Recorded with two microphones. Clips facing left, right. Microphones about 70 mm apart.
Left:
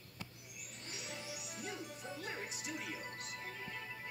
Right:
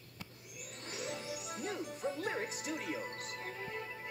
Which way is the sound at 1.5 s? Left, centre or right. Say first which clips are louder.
Right 6 dB; right.